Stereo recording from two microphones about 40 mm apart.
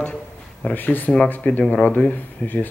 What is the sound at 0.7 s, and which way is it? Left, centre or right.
Speech, left.